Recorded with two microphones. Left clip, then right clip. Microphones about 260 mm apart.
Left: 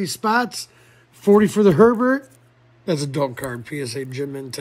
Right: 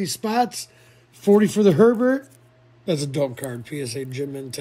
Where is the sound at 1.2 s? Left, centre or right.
Left.